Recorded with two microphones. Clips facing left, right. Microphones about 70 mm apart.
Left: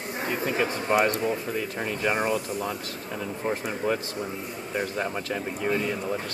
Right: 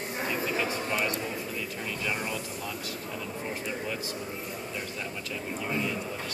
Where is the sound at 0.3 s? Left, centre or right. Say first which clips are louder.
Left 4 dB; left.